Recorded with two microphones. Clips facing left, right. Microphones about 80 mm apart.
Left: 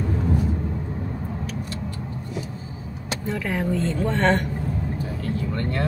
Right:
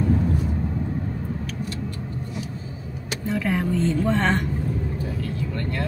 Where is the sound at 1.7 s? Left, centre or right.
Left.